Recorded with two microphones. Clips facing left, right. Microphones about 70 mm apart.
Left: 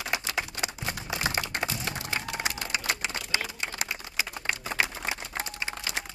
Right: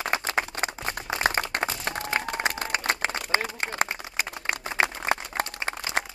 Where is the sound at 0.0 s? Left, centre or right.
Right.